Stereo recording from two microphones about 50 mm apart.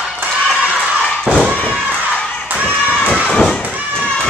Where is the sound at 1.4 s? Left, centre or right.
Centre.